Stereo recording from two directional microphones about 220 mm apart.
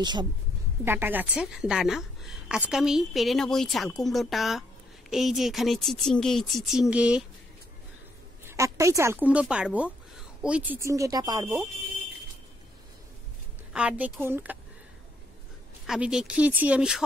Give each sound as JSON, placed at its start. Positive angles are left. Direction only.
{"t": 0.0, "sound": "a woman's voice", "side_deg": -20}
{"t": 0.8, "sound": "a woman's voice", "side_deg": -10}
{"t": 8.5, "sound": "a woman's voice", "side_deg": -15}
{"t": 13.7, "sound": "a woman's voice", "side_deg": -5}
{"t": 15.9, "sound": "a woman's voice", "side_deg": -5}